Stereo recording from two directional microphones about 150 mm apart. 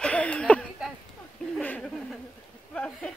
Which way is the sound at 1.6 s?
10° left (ahead or behind).